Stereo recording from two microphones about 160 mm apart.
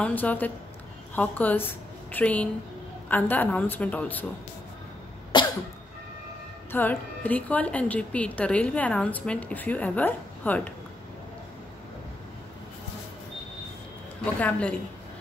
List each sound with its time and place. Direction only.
0.0 s a woman's voice: 10° left (ahead or behind)
5.3 s cough: 30° left (ahead or behind)
6.7 s a woman's voice: 10° left (ahead or behind)
14.4 s a woman's voice: 5° left (ahead or behind)